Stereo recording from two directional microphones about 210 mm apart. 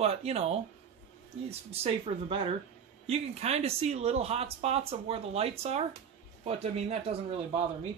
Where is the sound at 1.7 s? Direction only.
25° right (ahead or behind).